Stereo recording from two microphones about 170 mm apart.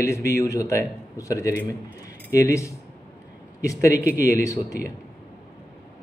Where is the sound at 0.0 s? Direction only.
15° left (ahead or behind).